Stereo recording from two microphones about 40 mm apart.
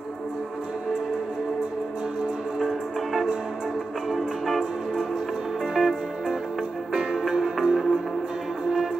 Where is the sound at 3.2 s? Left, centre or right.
Centre.